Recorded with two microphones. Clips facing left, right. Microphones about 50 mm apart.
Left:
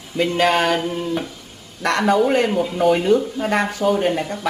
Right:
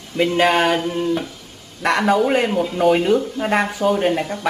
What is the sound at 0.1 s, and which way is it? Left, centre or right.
A woman's voice, centre.